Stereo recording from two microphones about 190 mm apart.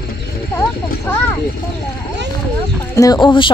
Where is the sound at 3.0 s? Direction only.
20° left (ahead or behind).